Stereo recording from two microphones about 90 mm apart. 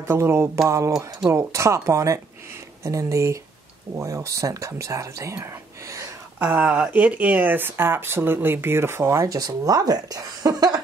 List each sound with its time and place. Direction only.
0.0 s speech: 30° right (ahead or behind)
6.4 s speech: 15° right (ahead or behind); by 10.8 s 45° right (ahead or behind)